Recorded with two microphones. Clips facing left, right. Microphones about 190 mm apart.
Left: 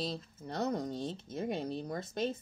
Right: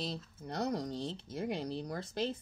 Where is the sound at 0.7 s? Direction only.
50° left (ahead or behind).